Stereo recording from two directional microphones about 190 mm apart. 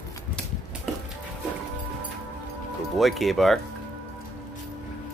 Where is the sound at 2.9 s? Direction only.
Centre (ahead or behind).